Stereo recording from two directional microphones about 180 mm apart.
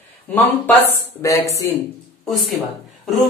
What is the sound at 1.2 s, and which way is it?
Speech, 15° left (ahead or behind).